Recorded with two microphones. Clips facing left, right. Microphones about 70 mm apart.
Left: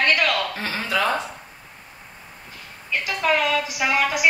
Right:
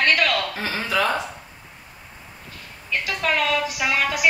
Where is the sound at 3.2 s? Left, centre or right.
Centre.